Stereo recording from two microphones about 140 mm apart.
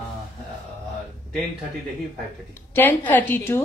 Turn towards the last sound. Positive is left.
turn(degrees=15)  # may be behind; listen again after turning